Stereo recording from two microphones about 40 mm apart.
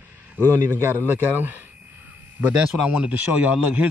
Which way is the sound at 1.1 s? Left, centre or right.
Right.